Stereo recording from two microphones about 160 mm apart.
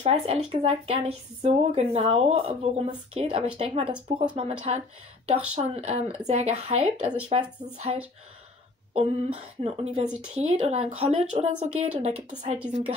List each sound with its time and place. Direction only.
0.0 s speech: 40° right (ahead or behind)